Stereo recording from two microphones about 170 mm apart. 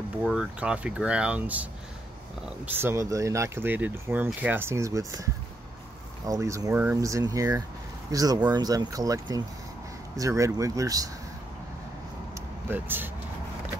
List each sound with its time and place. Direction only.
0.2 s speech: 5° right (ahead or behind)
12.6 s speech: 10° right (ahead or behind)